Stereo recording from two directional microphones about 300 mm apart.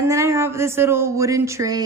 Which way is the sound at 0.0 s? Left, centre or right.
Centre.